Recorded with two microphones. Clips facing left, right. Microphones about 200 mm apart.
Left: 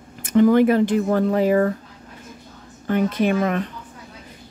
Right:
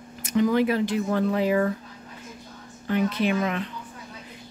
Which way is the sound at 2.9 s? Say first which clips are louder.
Left 4 dB; 50° left (ahead or behind).